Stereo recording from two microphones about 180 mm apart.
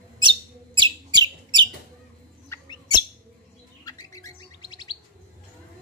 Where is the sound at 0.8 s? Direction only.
25° right (ahead or behind).